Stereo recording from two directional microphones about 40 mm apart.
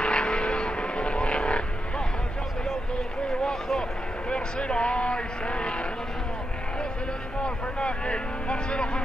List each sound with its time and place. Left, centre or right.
0.0 s vehicle: left
4.3 s speech: left
7.4 s speech: left